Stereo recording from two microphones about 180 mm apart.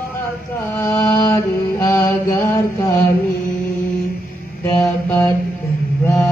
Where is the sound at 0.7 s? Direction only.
15° left (ahead or behind).